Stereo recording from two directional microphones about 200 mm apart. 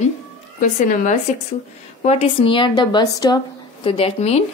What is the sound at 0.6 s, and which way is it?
Speech, 40° left (ahead or behind).